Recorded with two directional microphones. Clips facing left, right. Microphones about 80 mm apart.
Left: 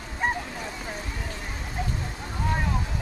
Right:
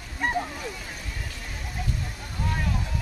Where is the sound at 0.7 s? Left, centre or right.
Left.